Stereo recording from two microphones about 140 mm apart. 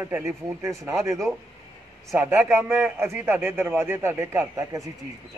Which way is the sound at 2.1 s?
10° right (ahead or behind).